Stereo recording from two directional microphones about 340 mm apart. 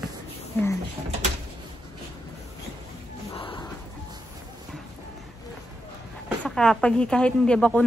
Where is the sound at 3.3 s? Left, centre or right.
Centre.